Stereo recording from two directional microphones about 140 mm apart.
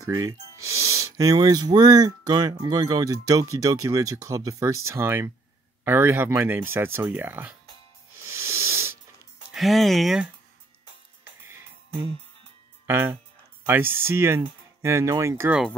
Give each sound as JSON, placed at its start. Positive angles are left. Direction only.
{"t": 0.2, "sound": "speech", "side_deg": -20}
{"t": 8.3, "sound": "hiss", "side_deg": -20}
{"t": 9.5, "sound": "speech", "side_deg": 0}
{"t": 12.8, "sound": "speech", "side_deg": -15}